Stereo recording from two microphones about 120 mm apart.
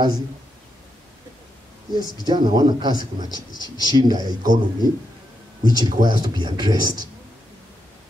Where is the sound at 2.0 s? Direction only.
35° right (ahead or behind).